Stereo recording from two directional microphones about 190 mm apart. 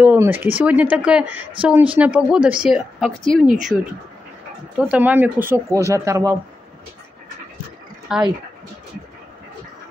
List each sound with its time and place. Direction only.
0.0 s speech: 10° right (ahead or behind)
3.4 s speech: 40° right (ahead or behind)
4.7 s speech: 5° right (ahead or behind)
8.1 s speech: 5° right (ahead or behind)